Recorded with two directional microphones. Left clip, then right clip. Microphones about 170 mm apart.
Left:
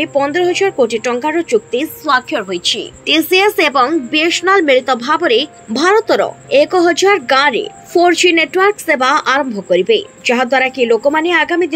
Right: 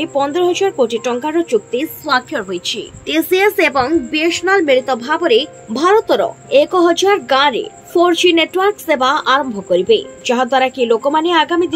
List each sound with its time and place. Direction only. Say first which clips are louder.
0.0 s a woman's voice: left 2 dB; 10° left (ahead or behind)
2.1 s a woman's voice: even; 20° left (ahead or behind)
9.8 s a woman's voice: left 1 dB; 55° left (ahead or behind)
10.3 s a woman's voice: left 1 dB; 10° left (ahead or behind)